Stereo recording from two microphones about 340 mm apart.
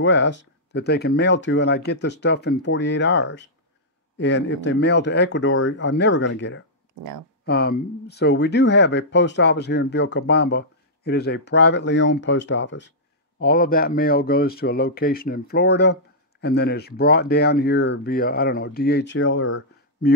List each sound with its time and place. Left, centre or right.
0.0 s speech: left
7.0 s speech: right
7.4 s speech: left